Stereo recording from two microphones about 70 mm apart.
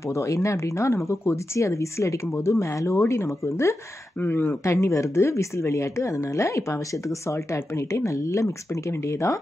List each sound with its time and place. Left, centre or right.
0.1 s speech: left
4.2 s speech: left
4.6 s speech: left